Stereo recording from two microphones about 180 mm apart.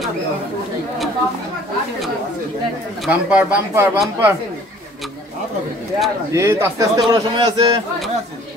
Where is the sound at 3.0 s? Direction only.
5° right (ahead or behind).